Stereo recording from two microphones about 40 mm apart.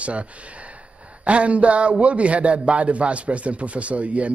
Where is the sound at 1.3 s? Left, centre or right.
Right.